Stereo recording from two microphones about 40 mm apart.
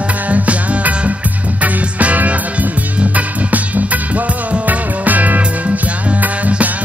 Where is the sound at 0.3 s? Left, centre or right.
Right.